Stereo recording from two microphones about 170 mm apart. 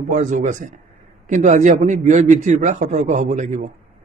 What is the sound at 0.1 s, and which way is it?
A man's voice, 45° right (ahead or behind).